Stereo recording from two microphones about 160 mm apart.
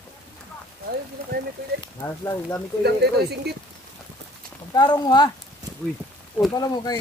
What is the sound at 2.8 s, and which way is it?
Speech, 90° right.